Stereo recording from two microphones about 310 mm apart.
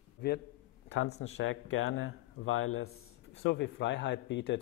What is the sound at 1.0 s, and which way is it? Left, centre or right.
Speech, left.